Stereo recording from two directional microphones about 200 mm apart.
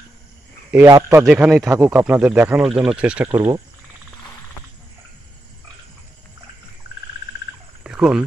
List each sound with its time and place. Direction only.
0.8 s speech: 15° right (ahead or behind)
1.2 s speech: 5° right (ahead or behind)
7.8 s a sound: 5° right (ahead or behind)